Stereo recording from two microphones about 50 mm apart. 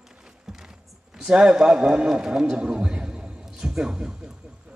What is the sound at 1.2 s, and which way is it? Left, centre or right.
A man's voice, centre.